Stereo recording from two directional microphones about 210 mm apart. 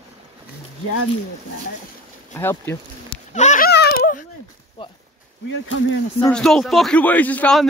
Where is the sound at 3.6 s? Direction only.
50° left (ahead or behind).